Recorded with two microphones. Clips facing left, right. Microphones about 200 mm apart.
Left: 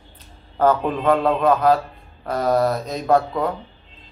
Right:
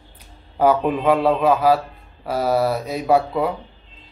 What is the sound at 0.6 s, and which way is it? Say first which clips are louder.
A man's voice: right 1 dB; 10° right (ahead or behind).